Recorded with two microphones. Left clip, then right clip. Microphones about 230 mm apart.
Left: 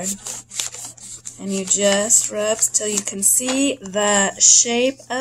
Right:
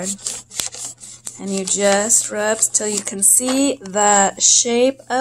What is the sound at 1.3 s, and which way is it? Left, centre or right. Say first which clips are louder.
Speech: right 1 dB; centre.